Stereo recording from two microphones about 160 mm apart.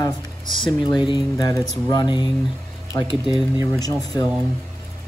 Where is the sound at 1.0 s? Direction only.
25° left (ahead or behind).